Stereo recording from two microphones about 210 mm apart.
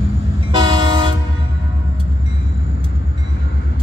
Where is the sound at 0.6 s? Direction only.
20° right (ahead or behind).